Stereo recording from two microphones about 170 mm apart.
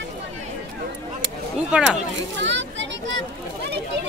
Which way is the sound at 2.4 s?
90° right.